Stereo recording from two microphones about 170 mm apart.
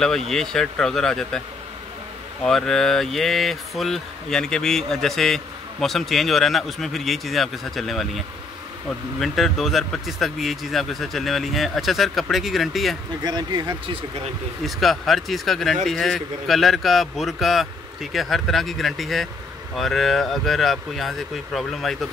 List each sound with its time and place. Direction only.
0.0 s speech: centre (ahead or behind)
2.4 s speech: 5° left (ahead or behind)
9.2 s speech: centre (ahead or behind)
13.2 s speech: 25° right (ahead or behind)
14.6 s speech: centre (ahead or behind)